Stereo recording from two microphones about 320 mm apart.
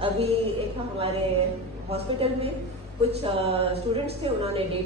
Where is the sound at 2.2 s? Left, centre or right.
Centre.